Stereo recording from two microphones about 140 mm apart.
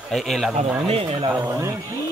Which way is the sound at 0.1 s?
Centre (ahead or behind).